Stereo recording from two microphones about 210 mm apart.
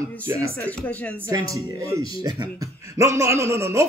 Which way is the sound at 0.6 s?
5° left (ahead or behind).